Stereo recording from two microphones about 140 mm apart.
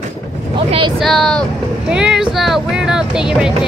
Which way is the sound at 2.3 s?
Centre (ahead or behind).